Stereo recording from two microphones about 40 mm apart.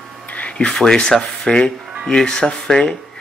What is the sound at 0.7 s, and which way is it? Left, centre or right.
Speech, left.